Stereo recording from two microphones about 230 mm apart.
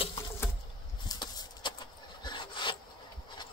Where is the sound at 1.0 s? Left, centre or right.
Centre.